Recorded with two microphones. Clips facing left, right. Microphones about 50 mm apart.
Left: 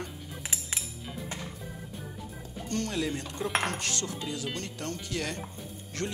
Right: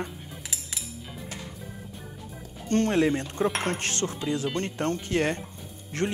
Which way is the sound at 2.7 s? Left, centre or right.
Right.